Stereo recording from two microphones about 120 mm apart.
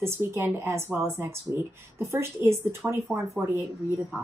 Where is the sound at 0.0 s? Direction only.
20° right (ahead or behind).